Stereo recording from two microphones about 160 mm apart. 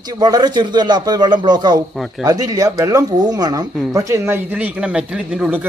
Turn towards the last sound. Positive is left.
turn(degrees=-5)  # may be behind; listen again after turning